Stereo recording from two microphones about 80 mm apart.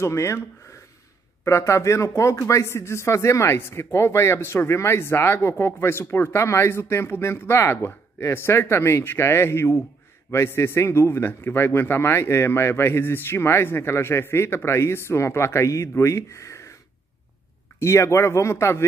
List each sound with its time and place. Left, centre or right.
0.0 s speech: left
17.7 s speech: left